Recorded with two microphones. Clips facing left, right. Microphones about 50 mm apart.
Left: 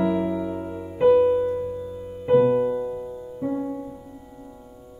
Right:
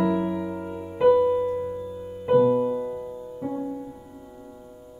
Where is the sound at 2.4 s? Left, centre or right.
Left.